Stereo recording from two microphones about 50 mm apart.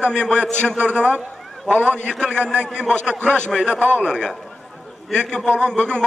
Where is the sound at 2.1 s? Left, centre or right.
Centre.